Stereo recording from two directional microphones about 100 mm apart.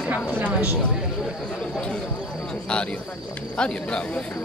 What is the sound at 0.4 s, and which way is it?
Speech, 15° right (ahead or behind).